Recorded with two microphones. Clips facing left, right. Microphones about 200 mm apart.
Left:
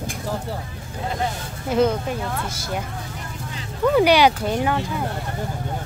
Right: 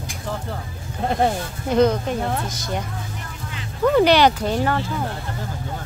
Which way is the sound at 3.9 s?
10° left (ahead or behind).